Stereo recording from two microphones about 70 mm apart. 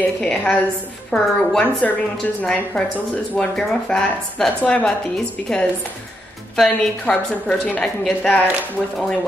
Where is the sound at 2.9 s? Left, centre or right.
Centre.